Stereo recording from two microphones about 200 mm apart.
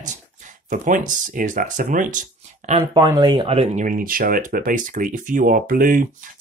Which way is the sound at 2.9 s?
20° right (ahead or behind).